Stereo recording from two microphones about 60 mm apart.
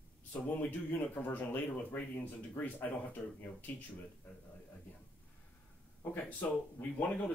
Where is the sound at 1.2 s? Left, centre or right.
Left.